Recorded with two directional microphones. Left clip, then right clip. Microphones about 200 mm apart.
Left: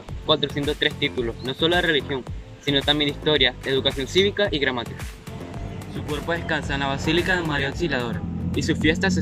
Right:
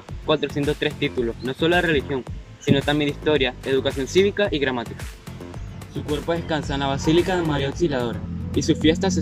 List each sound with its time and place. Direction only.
0.3 s speech: 10° right (ahead or behind)
6.0 s speech: 15° right (ahead or behind)